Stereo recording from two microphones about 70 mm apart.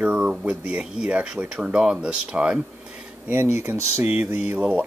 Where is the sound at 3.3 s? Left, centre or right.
Right.